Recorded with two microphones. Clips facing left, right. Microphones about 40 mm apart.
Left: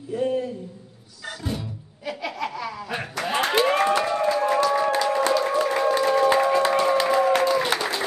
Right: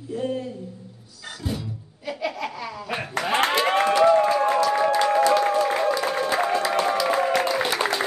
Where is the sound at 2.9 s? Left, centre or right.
Right.